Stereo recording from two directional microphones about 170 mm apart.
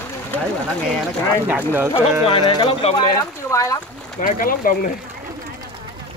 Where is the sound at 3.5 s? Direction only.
20° left (ahead or behind).